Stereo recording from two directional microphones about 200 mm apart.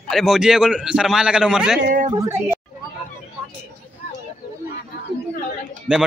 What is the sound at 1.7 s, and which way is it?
Speech, 50° right (ahead or behind).